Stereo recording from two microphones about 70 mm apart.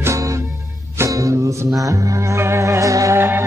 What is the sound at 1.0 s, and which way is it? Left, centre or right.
Music, right.